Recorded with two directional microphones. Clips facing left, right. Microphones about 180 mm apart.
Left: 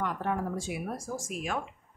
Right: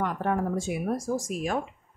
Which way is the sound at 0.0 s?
50° right (ahead or behind).